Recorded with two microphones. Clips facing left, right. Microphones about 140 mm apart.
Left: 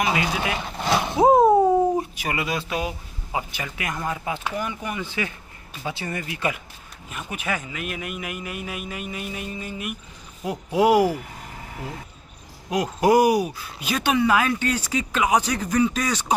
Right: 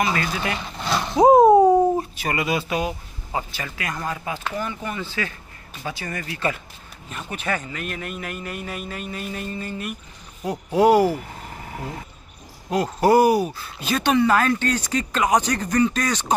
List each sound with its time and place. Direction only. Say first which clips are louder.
0.0 s speech: even; 15° left (ahead or behind)
1.4 s a sound: right 3 dB; 20° right (ahead or behind)
2.0 s speech: right 1 dB; 10° left (ahead or behind)
2.4 s speech: right 4 dB; centre (ahead or behind)
3.3 s speech: even; 15° left (ahead or behind)
12.6 s speech: right 1 dB; 10° left (ahead or behind)